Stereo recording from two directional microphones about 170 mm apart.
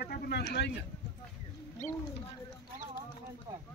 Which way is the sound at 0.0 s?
70° left (ahead or behind).